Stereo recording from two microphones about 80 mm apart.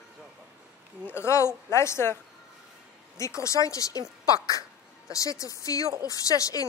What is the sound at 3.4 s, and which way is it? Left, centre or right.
Speech, left.